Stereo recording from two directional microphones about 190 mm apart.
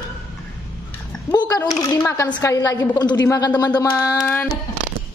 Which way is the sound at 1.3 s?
20° left (ahead or behind).